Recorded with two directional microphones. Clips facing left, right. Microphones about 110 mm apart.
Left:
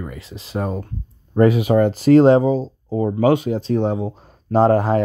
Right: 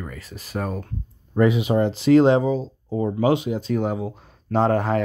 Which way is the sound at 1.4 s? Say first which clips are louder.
Left 4 dB; 50° left (ahead or behind).